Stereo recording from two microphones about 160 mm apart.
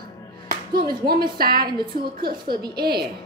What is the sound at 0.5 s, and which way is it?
Music, 65° right (ahead or behind).